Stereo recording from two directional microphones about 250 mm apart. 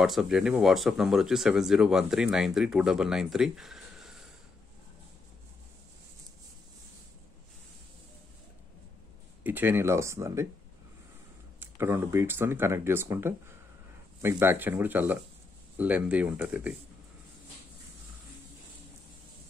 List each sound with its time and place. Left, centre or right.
0.0 s speech: centre
9.4 s speech: centre
11.6 s speech: centre